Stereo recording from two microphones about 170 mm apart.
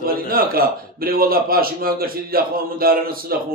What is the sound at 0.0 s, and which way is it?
A man's voice, 60° right (ahead or behind).